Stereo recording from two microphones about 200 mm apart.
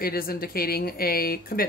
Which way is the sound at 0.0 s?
50° left (ahead or behind).